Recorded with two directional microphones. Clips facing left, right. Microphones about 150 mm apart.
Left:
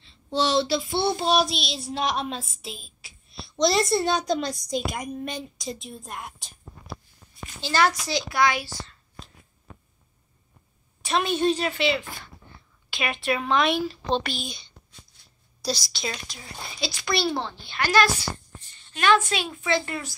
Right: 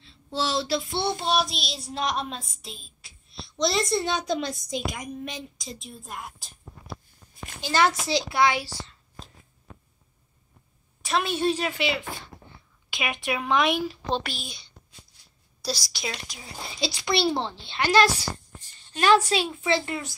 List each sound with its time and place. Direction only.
0.0 s child singing: centre (ahead or behind)
7.6 s a woman's voice: 20° right (ahead or behind)
11.0 s speech: centre (ahead or behind)
16.7 s a woman's voice: 25° right (ahead or behind)
18.9 s speech: 35° right (ahead or behind)
19.8 s a woman's voice: 20° right (ahead or behind)